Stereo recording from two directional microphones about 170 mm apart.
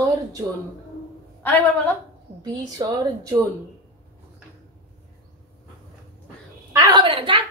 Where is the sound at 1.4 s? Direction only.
10° left (ahead or behind).